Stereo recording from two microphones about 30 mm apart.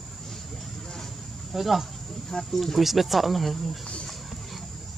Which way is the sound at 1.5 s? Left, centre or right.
Centre.